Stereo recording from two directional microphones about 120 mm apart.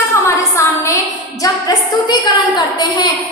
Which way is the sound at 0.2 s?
25° left (ahead or behind).